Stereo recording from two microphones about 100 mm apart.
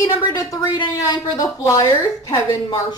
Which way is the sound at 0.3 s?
35° left (ahead or behind).